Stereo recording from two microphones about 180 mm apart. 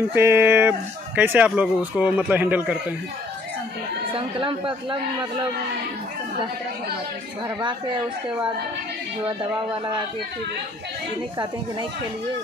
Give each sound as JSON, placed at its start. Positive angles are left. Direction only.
{"t": 0.1, "sound": "speech", "side_deg": -15}
{"t": 4.1, "sound": "speech", "side_deg": -30}